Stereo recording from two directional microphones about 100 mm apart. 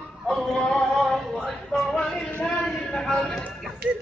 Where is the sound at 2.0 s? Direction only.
5° left (ahead or behind).